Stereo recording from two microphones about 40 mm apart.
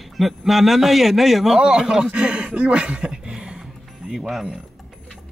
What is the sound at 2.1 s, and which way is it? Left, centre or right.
Speech, right.